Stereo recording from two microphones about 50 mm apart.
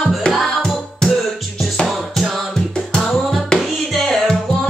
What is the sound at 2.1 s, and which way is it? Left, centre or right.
Music, centre.